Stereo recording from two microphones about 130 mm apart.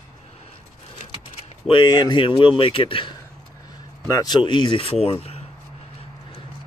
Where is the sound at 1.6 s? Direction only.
35° left (ahead or behind).